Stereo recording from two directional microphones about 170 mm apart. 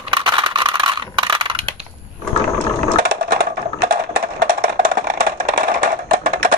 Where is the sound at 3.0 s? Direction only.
60° right (ahead or behind).